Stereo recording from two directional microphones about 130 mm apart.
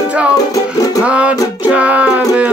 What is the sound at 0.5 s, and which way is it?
Music, 25° left (ahead or behind).